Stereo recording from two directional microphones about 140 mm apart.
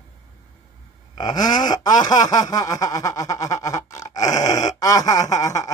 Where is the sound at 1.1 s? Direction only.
30° left (ahead or behind).